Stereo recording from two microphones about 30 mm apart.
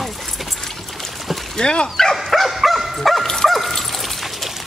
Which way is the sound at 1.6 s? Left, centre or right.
Left.